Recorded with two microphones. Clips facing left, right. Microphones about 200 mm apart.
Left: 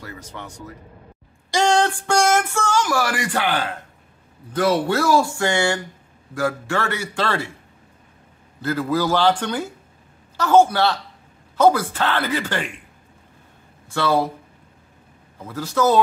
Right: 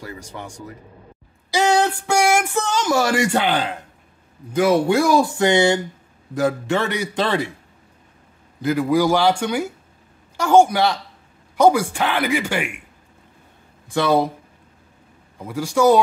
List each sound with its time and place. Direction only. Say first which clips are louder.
0.0 s speech: right 2 dB; 15° right (ahead or behind)
8.5 s speech: right 4 dB; 15° right (ahead or behind)
13.8 s speech: right 2 dB; 15° right (ahead or behind)
15.3 s speech: right 2 dB; 15° right (ahead or behind)